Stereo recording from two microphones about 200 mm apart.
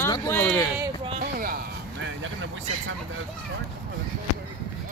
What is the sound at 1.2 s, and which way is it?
Speech, 45° right (ahead or behind).